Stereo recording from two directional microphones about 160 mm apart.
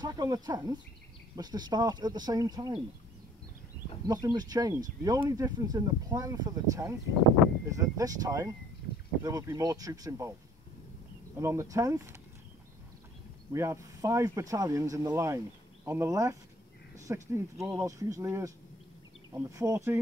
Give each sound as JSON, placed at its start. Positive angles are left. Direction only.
{"t": 0.0, "sound": "speech", "side_deg": -25}
{"t": 4.1, "sound": "speech", "side_deg": -25}
{"t": 11.3, "sound": "speech", "side_deg": -20}
{"t": 13.5, "sound": "speech", "side_deg": -20}